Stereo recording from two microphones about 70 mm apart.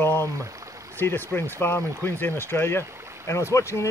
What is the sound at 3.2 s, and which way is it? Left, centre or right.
Speech, left.